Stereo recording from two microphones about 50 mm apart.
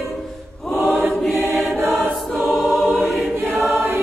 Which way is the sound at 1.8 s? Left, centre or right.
Right.